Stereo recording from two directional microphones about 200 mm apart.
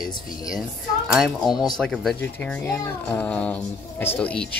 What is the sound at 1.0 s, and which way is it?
Speech, centre (ahead or behind).